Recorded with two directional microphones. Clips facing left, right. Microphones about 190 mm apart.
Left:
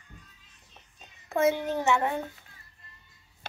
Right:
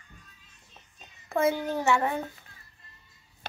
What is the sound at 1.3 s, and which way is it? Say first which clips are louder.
Speech: left 1 dB; 20° left (ahead or behind).